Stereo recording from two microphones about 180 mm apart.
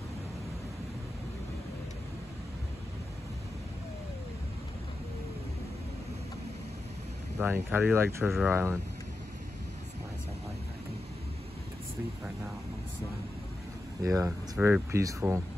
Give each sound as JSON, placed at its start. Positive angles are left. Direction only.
{"t": 7.3, "sound": "speech", "side_deg": -10}
{"t": 14.0, "sound": "speech", "side_deg": -20}